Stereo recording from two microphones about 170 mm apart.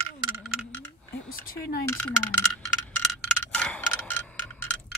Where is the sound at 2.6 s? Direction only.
5° left (ahead or behind).